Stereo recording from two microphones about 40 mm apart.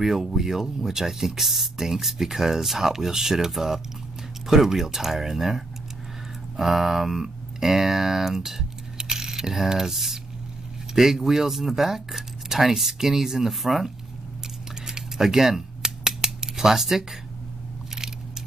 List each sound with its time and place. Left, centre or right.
0.0 s speech: centre
14.9 s scissors: centre